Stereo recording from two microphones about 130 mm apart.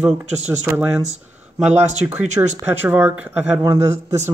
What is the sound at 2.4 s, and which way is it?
A man's voice, 25° right (ahead or behind).